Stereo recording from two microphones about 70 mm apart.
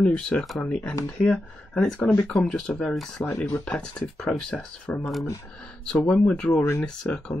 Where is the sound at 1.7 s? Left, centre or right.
Centre.